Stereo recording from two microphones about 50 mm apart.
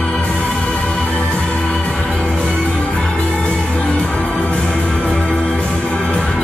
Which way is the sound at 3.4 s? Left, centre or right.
Centre.